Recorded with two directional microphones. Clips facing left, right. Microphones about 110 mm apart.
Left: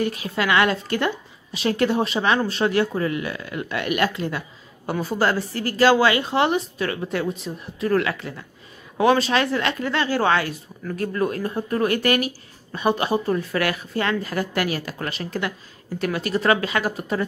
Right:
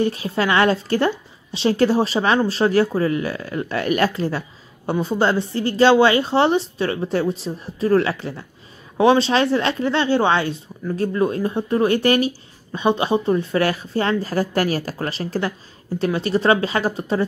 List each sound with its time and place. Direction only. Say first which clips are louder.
0.0 s a woman's voice: right 3 dB; 30° right (ahead or behind)